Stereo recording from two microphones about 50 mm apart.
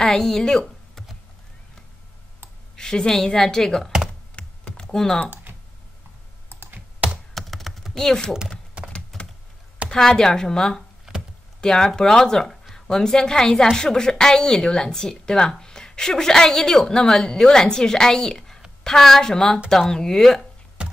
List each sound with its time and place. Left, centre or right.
0.0 s a woman's voice: centre
2.7 s a woman's voice: centre
4.4 s computer keyboard: centre
6.5 s computer keyboard: right
7.3 s typing: centre
7.9 s speech: centre
8.9 s typing: left
9.8 s a woman's voice: centre
20.8 s computer keyboard: centre